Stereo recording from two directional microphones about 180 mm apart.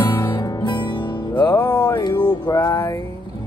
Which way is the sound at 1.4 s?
10° left (ahead or behind).